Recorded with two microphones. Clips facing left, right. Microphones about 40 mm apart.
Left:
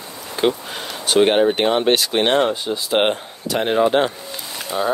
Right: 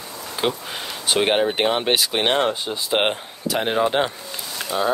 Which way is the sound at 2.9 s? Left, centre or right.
Centre.